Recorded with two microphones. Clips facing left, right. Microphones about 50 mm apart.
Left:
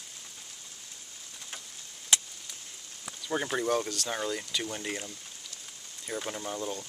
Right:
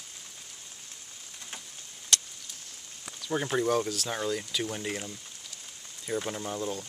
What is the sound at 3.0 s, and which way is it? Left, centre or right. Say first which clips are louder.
Speech: right 1 dB; centre.